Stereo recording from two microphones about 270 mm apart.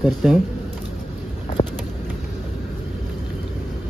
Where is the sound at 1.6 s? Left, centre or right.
Centre.